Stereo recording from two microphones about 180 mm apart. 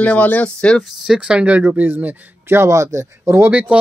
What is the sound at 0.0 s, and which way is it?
Speech, 10° left (ahead or behind).